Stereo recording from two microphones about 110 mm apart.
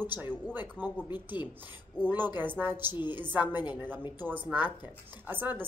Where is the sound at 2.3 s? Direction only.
15° right (ahead or behind).